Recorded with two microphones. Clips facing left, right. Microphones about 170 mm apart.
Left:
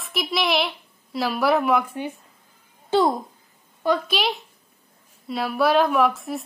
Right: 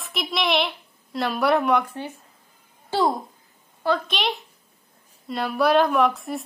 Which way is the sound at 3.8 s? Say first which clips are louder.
Left 2 dB; 10° left (ahead or behind).